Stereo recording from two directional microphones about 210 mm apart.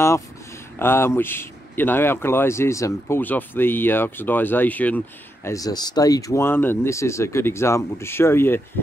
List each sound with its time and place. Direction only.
0.7 s speech: 10° left (ahead or behind)